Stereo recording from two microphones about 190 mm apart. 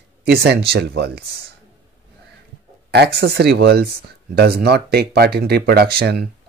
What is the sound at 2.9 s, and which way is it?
Speech, 60° right (ahead or behind).